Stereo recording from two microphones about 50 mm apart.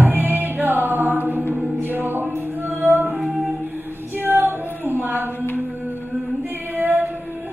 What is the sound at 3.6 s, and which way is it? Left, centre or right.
A capella, right.